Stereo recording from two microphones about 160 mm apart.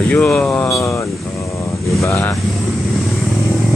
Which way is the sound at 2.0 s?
15° left (ahead or behind).